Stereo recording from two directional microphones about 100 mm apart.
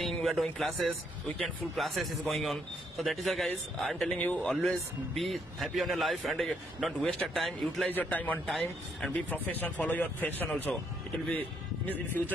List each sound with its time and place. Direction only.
0.0 s a man's voice: centre (ahead or behind)
4.1 s speech: 15° left (ahead or behind)
4.5 s a man's voice: 5° left (ahead or behind)
7.9 s speech: 15° left (ahead or behind)
10.7 s speech: 5° left (ahead or behind)
11.8 s speech: 20° left (ahead or behind)